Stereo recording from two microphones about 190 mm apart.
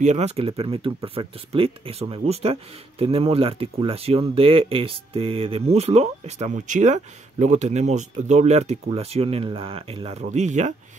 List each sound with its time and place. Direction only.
0.0 s speech: 35° right (ahead or behind)